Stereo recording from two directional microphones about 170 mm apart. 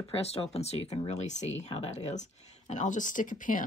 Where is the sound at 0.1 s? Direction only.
35° left (ahead or behind).